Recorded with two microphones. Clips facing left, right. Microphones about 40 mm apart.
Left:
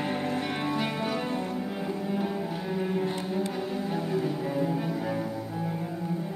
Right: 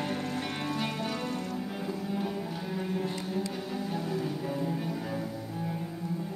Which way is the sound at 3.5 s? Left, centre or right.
Centre.